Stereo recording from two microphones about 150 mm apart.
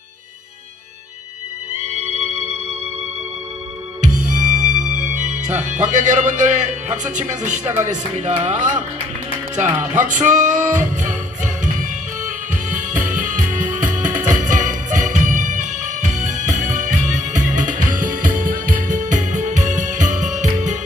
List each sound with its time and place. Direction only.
1.9 s music: 50° right (ahead or behind)
4.0 s music: 55° right (ahead or behind)
9.6 s speech: 10° right (ahead or behind)
10.0 s music: 55° right (ahead or behind)